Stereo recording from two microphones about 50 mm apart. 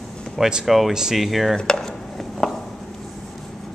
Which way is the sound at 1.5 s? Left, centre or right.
Centre.